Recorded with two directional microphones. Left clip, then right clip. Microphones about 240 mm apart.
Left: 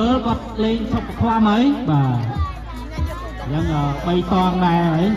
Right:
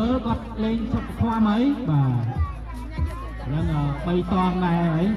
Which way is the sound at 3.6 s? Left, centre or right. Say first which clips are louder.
Left 7 dB; left.